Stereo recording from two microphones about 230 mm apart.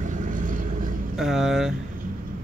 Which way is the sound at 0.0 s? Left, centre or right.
Right.